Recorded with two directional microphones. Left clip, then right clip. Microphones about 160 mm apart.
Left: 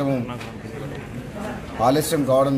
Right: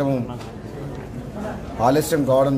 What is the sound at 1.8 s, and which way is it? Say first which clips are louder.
Speech: right 1 dB; 5° right (ahead or behind).